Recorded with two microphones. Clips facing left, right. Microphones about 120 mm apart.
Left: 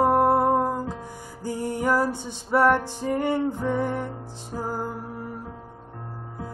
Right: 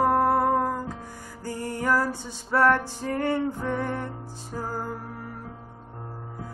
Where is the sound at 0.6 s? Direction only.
20° left (ahead or behind).